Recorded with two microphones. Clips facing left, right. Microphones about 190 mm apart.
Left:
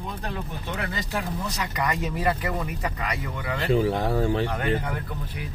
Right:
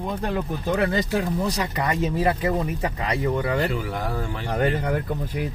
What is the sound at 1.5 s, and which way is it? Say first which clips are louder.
Speech: right 3 dB; 30° right (ahead or behind).